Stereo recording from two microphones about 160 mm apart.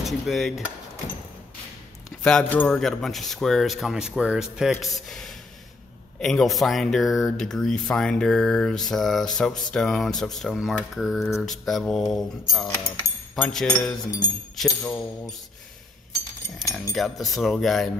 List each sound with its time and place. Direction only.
0.0 s speech: centre (ahead or behind)
2.2 s speech: 5° left (ahead or behind)
12.6 s speech: 20° left (ahead or behind)
13.4 s speech: 5° left (ahead or behind)
16.9 s speech: centre (ahead or behind)